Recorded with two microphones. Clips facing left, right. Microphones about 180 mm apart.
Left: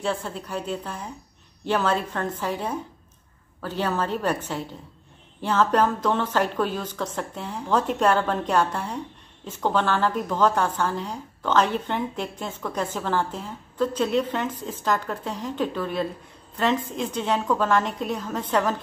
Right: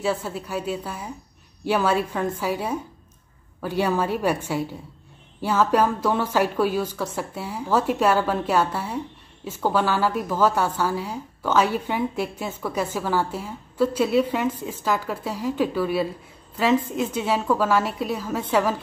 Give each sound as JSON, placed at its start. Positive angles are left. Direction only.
{"t": 0.0, "sound": "a woman's voice", "side_deg": -5}